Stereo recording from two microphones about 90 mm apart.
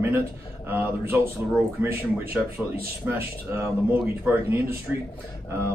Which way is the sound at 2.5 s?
20° right (ahead or behind).